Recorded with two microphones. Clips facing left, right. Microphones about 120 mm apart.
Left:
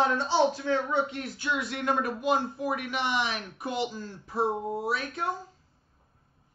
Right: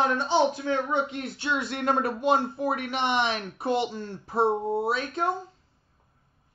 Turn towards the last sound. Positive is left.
turn(degrees=-30)  # may be behind; listen again after turning